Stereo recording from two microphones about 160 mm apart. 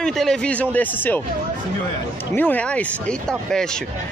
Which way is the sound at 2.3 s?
10° left (ahead or behind).